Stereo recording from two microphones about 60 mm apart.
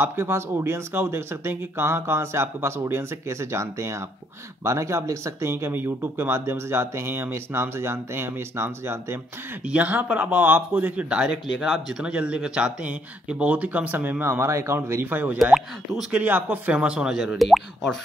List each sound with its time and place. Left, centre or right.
0.0 s speech: right
9.7 s speech: right
11.6 s speech: centre
12.0 s speech: centre
14.2 s speech: right
16.1 s speech: right
17.2 s speech: centre